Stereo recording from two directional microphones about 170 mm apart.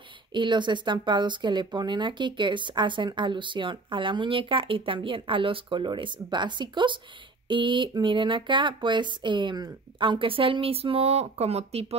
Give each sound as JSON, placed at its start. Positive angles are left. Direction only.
{"t": 0.3, "sound": "speech", "side_deg": -25}